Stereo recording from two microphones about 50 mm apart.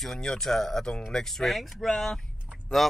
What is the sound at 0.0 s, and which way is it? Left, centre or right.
Speech, centre.